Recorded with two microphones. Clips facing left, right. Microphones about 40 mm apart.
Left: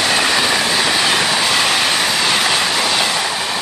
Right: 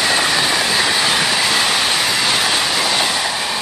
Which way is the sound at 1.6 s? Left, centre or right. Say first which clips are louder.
Left 1 dB; left.